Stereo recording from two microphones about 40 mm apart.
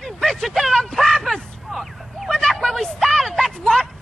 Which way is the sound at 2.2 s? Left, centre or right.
Centre.